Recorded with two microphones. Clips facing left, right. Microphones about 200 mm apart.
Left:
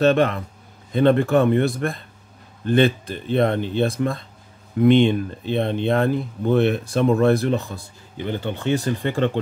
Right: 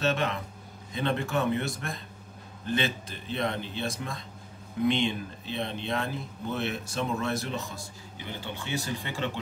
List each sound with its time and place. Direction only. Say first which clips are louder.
0.0 s speech: left 11 dB; 55° left (ahead or behind)